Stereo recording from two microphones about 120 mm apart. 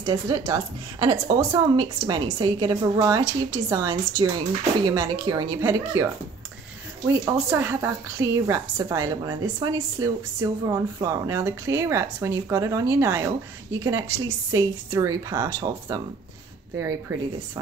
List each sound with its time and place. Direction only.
0.0 s a woman's voice: 35° right (ahead or behind)
7.1 s a woman's voice: 20° right (ahead or behind)